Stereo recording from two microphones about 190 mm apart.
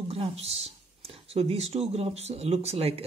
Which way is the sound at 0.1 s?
30° right (ahead or behind).